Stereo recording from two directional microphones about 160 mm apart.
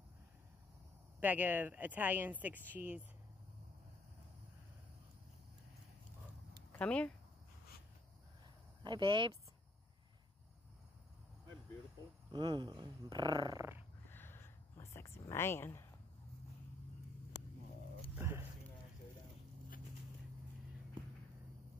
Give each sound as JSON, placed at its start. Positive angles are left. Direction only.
{"t": 1.2, "sound": "speech", "side_deg": -10}
{"t": 6.7, "sound": "speech", "side_deg": 10}
{"t": 8.8, "sound": "speech", "side_deg": -30}
{"t": 12.3, "sound": "speech", "side_deg": -30}
{"t": 14.0, "sound": "a sound", "side_deg": 15}
{"t": 18.1, "sound": "a sound", "side_deg": -15}